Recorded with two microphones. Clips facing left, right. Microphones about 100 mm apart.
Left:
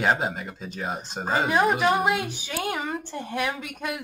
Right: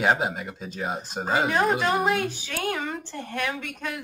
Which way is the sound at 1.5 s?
10° left (ahead or behind).